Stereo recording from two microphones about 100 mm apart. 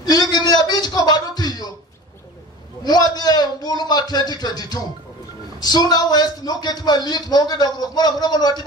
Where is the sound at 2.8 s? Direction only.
45° left (ahead or behind).